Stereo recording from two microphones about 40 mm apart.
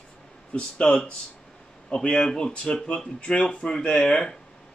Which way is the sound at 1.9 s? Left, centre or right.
Centre.